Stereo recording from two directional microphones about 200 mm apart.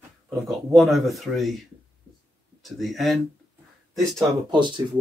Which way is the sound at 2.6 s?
Centre (ahead or behind).